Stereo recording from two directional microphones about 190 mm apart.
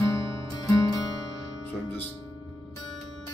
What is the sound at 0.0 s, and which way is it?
Music, 20° left (ahead or behind).